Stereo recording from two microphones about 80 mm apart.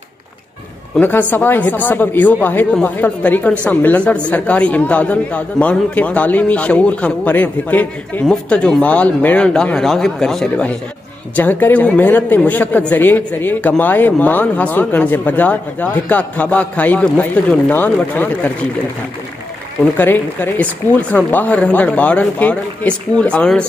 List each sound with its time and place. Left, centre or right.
0.9 s speech: left
20.0 s speech: left